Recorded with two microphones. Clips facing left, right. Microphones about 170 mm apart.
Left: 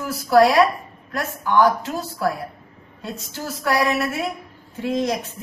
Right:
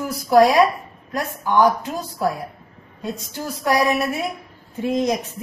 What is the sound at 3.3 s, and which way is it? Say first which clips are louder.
A woman's voice: right 2 dB; 15° right (ahead or behind).